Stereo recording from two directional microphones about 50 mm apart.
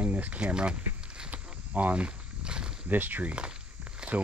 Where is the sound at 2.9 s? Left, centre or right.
Right.